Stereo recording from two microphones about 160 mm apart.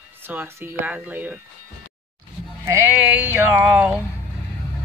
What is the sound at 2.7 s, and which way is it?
Speech, 10° right (ahead or behind).